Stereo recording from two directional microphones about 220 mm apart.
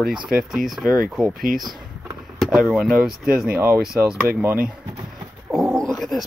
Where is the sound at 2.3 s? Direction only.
Centre (ahead or behind).